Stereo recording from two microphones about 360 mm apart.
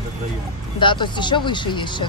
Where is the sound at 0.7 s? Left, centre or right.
Centre.